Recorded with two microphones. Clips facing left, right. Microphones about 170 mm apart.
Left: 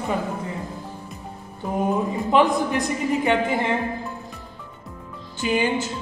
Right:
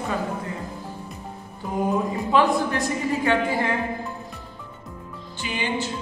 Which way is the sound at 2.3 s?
20° left (ahead or behind).